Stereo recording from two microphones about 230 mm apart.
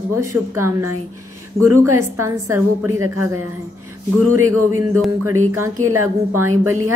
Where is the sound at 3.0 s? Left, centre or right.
Right.